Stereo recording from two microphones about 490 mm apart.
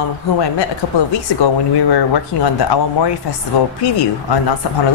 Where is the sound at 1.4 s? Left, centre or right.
Left.